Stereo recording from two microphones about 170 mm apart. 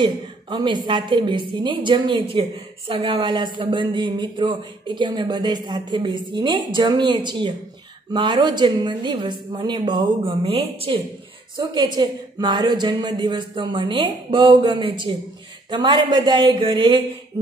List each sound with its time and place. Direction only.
0.0 s speech: 25° right (ahead or behind)